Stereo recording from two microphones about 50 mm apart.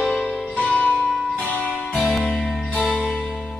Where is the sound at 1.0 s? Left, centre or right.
Centre.